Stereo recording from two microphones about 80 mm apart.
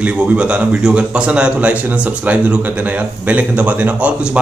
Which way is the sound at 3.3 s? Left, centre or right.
Centre.